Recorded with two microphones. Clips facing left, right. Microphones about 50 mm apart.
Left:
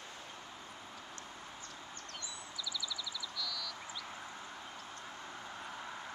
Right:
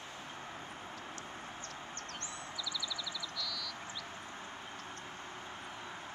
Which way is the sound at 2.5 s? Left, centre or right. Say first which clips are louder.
Even; centre.